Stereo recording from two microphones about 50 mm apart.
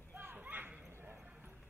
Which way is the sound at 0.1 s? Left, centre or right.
Right.